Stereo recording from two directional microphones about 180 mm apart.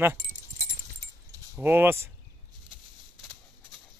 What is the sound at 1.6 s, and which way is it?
Speech, 10° right (ahead or behind).